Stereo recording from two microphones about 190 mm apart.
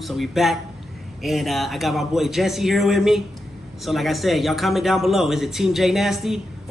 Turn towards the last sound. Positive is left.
turn(degrees=0)  # may be behind; listen again after turning